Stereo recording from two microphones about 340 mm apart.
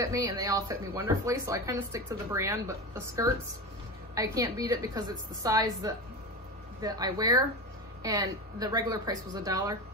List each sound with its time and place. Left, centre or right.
0.0 s speech: centre
4.1 s speech: centre